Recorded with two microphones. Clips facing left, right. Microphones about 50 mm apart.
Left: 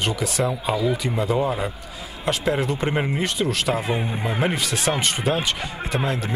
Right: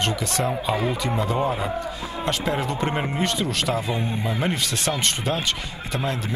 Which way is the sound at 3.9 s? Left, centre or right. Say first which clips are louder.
Left 1 dB; left.